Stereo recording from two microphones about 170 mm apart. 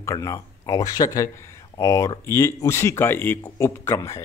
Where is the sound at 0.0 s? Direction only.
15° left (ahead or behind).